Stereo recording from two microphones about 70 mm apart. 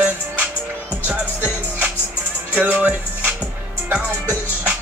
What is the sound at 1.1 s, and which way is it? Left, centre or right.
Music, centre.